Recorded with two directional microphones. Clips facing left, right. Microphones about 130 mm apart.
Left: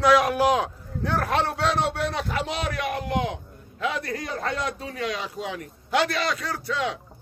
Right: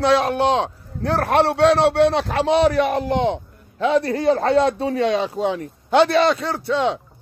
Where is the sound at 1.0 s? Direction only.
70° right (ahead or behind).